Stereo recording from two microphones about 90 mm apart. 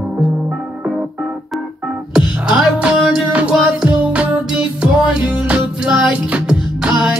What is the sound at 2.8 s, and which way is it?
Music, 15° right (ahead or behind).